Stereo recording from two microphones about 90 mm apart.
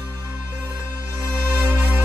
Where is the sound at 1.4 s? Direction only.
25° right (ahead or behind).